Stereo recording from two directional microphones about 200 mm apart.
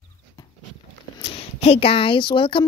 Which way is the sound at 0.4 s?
20° left (ahead or behind).